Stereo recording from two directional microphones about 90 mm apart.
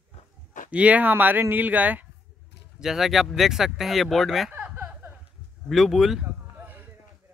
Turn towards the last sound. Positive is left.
turn(degrees=-20)  # may be behind; listen again after turning